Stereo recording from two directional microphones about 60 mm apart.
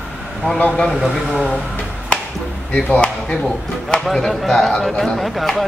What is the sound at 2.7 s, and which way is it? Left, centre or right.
Speech, centre.